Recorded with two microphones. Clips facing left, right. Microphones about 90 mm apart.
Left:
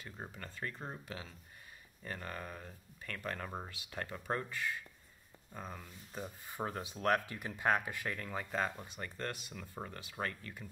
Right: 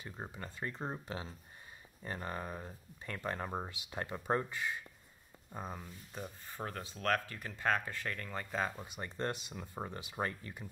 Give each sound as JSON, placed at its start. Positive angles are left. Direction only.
{"t": 0.0, "sound": "speech", "side_deg": -20}
{"t": 6.1, "sound": "speech", "side_deg": 10}
{"t": 8.7, "sound": "speech", "side_deg": -15}